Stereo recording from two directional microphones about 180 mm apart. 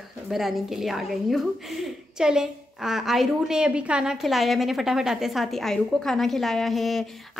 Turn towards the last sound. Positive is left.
turn(degrees=0)  # may be behind; listen again after turning